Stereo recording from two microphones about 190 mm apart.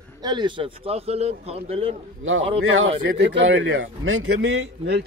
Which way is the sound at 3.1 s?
85° right.